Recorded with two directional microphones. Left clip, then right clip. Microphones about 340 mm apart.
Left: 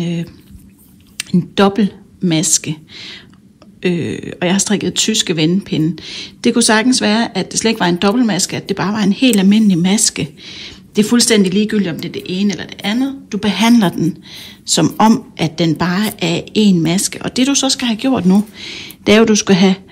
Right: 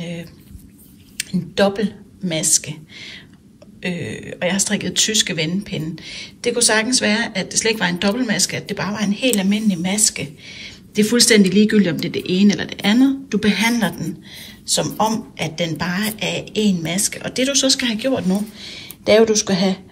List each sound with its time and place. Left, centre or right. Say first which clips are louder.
0.0 s speech: left 7 dB; centre
1.2 s a sound: left 2 dB; centre
1.5 s speech: left 3 dB; centre